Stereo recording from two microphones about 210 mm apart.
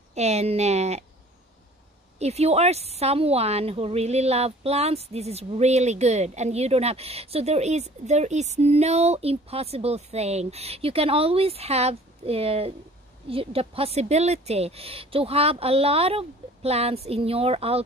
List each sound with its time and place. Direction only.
0.1 s speech: 30° right (ahead or behind)
2.1 s speech: 30° right (ahead or behind)